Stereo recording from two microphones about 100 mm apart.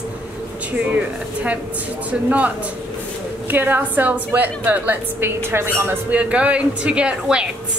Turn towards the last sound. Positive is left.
turn(degrees=-10)  # may be behind; listen again after turning